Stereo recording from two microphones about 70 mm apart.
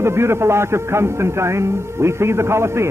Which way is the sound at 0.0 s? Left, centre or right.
Right.